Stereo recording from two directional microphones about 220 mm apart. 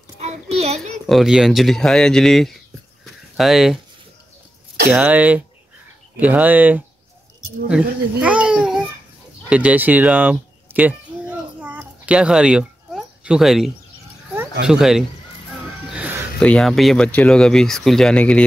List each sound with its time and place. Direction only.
0.2 s child singing: 30° right (ahead or behind)
0.7 s speech: centre (ahead or behind)
4.9 s speech: 5° right (ahead or behind)
9.5 s a sound: 5° right (ahead or behind)
14.7 s speech: centre (ahead or behind)
15.9 s music: 5° right (ahead or behind)
16.4 s speech: 5° left (ahead or behind)